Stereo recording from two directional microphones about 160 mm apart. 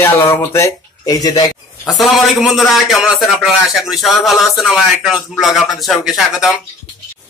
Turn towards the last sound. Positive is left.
turn(degrees=0)  # may be behind; listen again after turning